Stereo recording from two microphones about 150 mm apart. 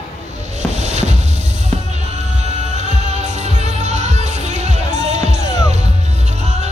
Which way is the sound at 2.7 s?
50° right (ahead or behind).